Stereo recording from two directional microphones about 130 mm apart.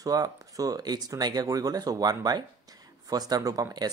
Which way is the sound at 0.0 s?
30° right (ahead or behind).